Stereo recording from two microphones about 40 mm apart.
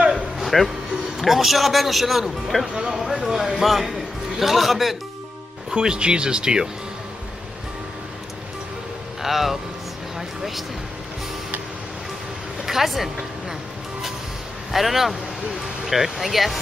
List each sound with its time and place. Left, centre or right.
0.4 s a man's voice: centre
2.7 s a man's voice: centre
5.7 s speech: centre
9.2 s speech: centre
10.1 s a sound: centre
12.6 s a sound: centre
14.7 s a man's voice: centre